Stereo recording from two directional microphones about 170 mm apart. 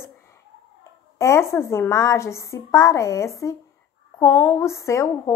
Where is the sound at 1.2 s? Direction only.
15° left (ahead or behind).